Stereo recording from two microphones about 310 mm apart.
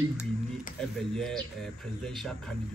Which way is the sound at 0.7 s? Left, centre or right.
Centre.